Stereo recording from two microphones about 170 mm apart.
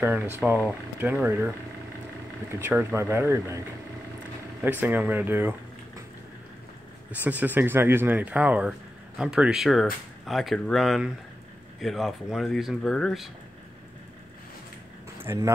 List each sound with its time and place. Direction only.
0.0 s speech: 10° right (ahead or behind)
2.6 s speech: 15° right (ahead or behind)
4.6 s speech: 10° right (ahead or behind)
7.1 s speech: 10° right (ahead or behind)
15.2 s speech: 20° right (ahead or behind)